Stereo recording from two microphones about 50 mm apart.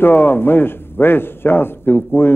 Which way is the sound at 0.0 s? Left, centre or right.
Left.